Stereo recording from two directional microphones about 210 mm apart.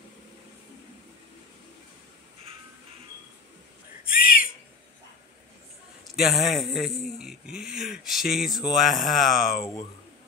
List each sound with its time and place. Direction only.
4.0 s owl: 45° left (ahead or behind)
6.1 s speech: centre (ahead or behind)